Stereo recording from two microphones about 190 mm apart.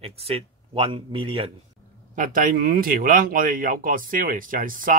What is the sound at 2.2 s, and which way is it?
Speech, 45° right (ahead or behind).